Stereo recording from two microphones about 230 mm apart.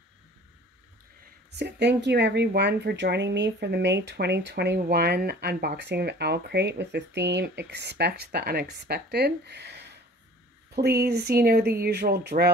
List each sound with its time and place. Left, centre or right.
1.6 s speech: right